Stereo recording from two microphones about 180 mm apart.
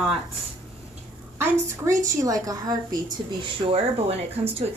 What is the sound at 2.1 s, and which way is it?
Speech, 20° right (ahead or behind).